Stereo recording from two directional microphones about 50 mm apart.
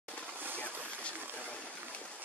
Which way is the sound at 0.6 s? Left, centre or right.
Left.